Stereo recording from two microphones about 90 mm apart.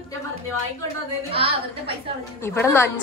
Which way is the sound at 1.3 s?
90° right.